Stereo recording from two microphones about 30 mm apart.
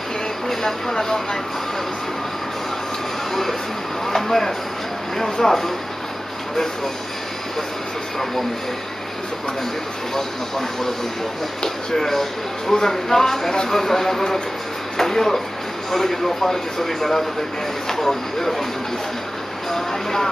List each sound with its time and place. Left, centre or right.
0.5 s speech: centre
4.1 s speech: centre
11.9 s speech: centre
19.7 s speech: centre